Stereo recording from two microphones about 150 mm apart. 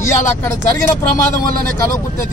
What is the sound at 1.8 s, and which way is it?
Speech, 20° left (ahead or behind).